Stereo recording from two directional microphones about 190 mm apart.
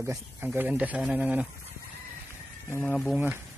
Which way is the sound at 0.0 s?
15° right (ahead or behind).